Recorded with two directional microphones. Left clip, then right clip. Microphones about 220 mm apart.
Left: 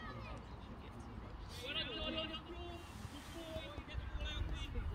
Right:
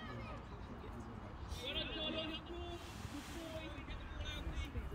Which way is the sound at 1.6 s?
35° left (ahead or behind).